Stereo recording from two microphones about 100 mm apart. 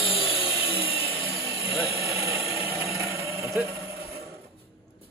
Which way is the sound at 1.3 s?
30° right (ahead or behind).